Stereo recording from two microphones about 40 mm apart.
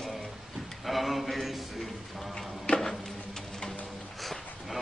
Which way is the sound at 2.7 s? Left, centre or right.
Left.